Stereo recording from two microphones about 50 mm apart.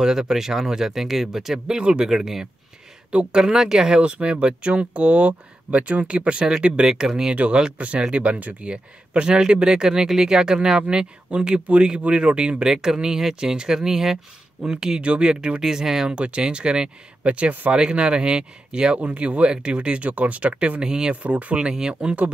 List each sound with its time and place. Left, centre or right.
0.0 s speech: centre
7.3 s speech: right
20.8 s speech: centre
21.1 s speech: right